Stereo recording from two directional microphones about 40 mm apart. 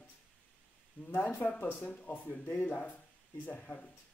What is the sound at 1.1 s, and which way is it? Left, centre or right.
Speech, left.